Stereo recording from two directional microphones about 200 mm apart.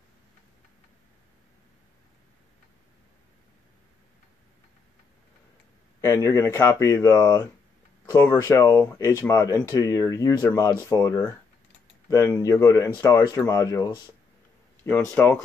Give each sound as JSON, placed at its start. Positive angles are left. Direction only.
{"t": 5.9, "sound": "speech", "side_deg": 15}